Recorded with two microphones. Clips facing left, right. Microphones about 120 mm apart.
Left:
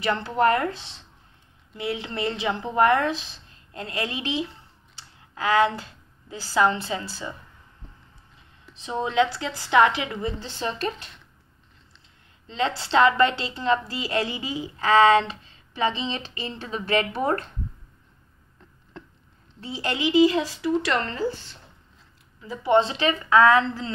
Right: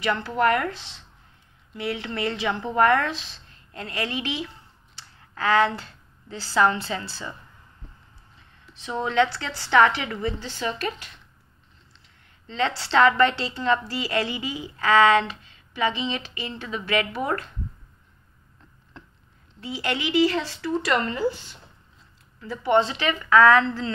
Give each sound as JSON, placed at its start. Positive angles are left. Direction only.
{"t": 0.0, "sound": "a woman's voice", "side_deg": 20}
{"t": 8.8, "sound": "a woman's voice", "side_deg": 20}
{"t": 12.4, "sound": "a woman's voice", "side_deg": 15}
{"t": 19.6, "sound": "a woman's voice", "side_deg": 25}
{"t": 20.8, "sound": "speech", "side_deg": -5}
{"t": 22.4, "sound": "a woman's voice", "side_deg": 20}